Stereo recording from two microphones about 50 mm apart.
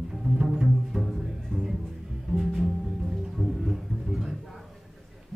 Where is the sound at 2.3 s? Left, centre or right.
Right.